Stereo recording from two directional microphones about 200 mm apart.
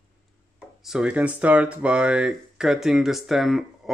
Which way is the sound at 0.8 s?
5° right (ahead or behind).